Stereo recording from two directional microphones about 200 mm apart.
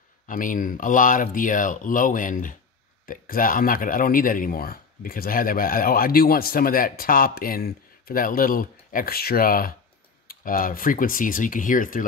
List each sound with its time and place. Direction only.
0.3 s speech: 40° left (ahead or behind)